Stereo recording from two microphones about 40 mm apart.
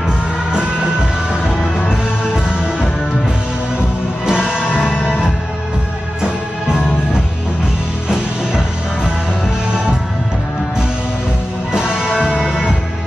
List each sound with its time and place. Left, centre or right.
1.9 s music: centre
4.3 s music: centre
8.1 s music: centre
11.7 s music: right